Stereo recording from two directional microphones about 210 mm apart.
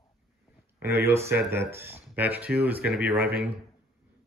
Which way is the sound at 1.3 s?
10° right (ahead or behind).